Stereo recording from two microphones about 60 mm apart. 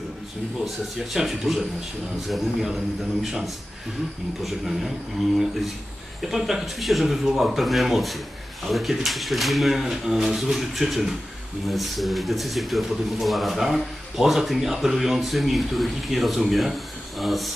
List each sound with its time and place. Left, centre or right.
0.9 s speech: centre